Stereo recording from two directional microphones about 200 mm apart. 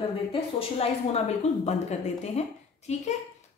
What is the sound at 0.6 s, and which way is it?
A woman's voice, 30° left (ahead or behind).